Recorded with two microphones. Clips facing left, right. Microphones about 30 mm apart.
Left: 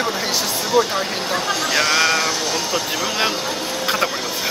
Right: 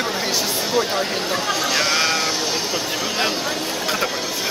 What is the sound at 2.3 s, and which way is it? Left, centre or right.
Music, centre.